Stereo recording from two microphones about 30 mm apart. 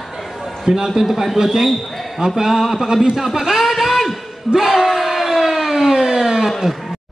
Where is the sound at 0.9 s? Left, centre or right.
Centre.